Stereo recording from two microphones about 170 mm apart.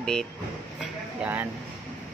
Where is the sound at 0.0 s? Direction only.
5° left (ahead or behind).